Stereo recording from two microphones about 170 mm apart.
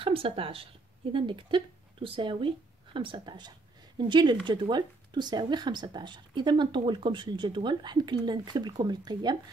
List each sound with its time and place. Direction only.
0.0 s a woman's voice: 30° right (ahead or behind)